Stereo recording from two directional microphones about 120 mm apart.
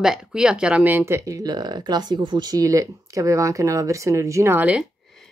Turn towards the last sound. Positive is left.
turn(degrees=-15)  # may be behind; listen again after turning